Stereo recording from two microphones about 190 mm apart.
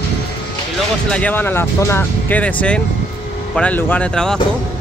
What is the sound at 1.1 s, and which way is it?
Speech, 10° left (ahead or behind).